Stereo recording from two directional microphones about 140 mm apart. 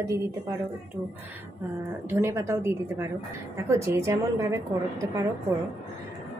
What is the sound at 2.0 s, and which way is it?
Speech, 20° right (ahead or behind).